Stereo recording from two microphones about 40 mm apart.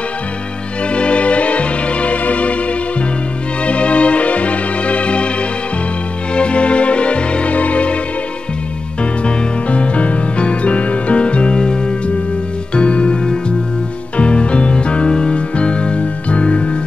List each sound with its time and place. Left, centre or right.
0.9 s music: left
3.6 s music: left
6.3 s music: left
9.2 s music: left